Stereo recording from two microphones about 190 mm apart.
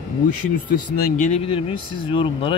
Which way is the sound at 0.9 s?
45° left (ahead or behind).